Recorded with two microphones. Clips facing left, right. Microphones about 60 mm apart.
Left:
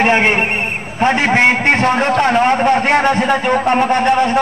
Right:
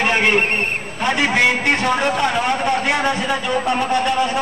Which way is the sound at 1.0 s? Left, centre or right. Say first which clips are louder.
Left 5 dB; left.